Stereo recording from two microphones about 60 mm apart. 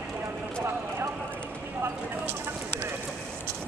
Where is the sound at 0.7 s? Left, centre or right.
Right.